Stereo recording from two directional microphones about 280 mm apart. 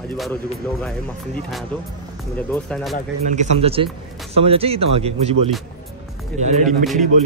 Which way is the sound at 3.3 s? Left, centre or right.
Right.